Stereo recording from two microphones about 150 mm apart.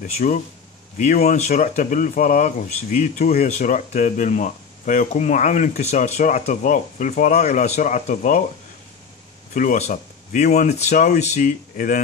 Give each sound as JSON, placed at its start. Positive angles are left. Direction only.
{"t": 0.0, "sound": "speech", "side_deg": 60}
{"t": 1.2, "sound": "speech", "side_deg": 45}
{"t": 1.5, "sound": "speech", "side_deg": 60}
{"t": 9.5, "sound": "speech", "side_deg": 60}